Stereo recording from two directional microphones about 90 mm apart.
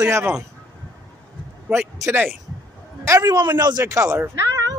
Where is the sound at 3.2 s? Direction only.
50° right (ahead or behind).